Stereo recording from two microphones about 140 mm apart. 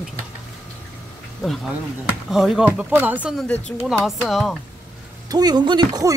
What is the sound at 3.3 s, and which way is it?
Speech, 10° left (ahead or behind).